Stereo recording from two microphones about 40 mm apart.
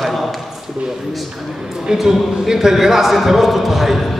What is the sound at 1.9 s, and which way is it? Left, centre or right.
A man's voice, centre.